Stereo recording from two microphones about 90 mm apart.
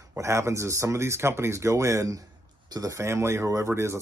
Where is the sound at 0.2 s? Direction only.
35° right (ahead or behind).